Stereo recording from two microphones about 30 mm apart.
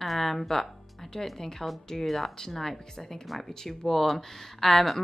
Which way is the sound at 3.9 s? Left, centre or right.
Centre.